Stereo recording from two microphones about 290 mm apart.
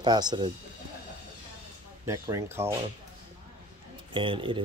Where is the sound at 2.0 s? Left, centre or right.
Centre.